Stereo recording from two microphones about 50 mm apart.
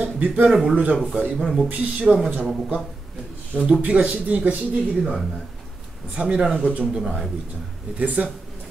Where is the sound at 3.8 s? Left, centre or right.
Right.